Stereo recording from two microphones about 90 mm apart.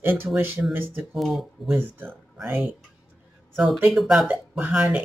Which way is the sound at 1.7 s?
20° right (ahead or behind).